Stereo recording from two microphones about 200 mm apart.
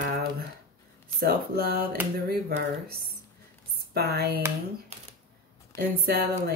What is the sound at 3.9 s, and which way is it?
Speech, 55° right (ahead or behind).